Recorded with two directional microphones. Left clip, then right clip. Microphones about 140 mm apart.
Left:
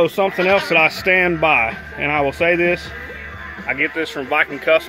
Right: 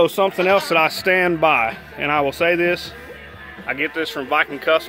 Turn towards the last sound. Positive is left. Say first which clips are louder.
# left 2 dB
turn(degrees=-15)  # may be behind; listen again after turning